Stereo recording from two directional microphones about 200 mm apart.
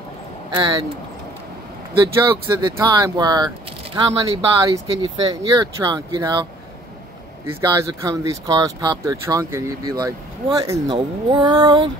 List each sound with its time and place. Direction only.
0.6 s speech: 20° right (ahead or behind)
2.0 s speech: 20° right (ahead or behind)
7.4 s speech: 15° right (ahead or behind)